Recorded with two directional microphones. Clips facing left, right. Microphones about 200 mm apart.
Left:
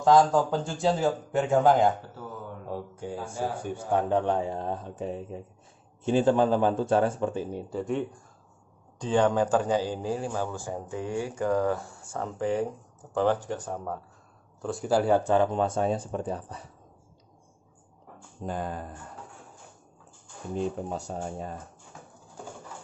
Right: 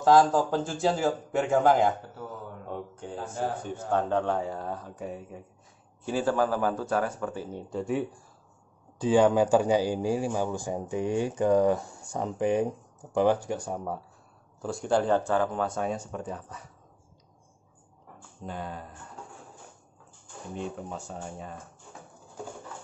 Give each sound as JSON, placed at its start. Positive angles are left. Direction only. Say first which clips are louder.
{"t": 0.0, "sound": "speech", "louder": "even", "side_deg": 0}
{"t": 7.7, "sound": "speech", "louder": "right 1 dB", "side_deg": -5}
{"t": 14.6, "sound": "speech", "louder": "left 1 dB", "side_deg": 0}
{"t": 18.4, "sound": "speech", "louder": "left 4 dB", "side_deg": 45}
{"t": 20.9, "sound": "speech", "louder": "left 4 dB", "side_deg": 40}